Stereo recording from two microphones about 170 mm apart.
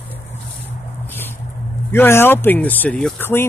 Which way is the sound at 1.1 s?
10° left (ahead or behind).